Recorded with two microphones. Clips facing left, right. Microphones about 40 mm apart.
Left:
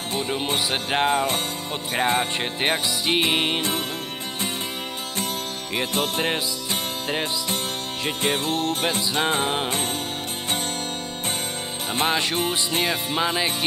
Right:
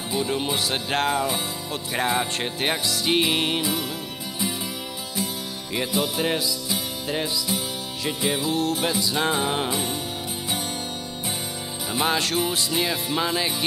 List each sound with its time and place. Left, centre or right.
0.2 s music: centre
5.9 s music: left
9.1 s music: left
12.0 s music: centre